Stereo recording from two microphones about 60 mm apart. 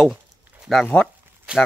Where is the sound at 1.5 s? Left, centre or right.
Centre.